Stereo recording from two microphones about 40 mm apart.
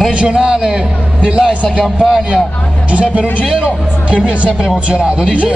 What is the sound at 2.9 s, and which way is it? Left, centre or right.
Speech, right.